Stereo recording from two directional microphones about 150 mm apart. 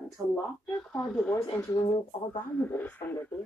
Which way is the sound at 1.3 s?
20° left (ahead or behind).